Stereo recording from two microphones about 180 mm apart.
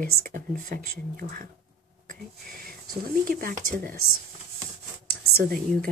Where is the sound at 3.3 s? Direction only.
50° right (ahead or behind).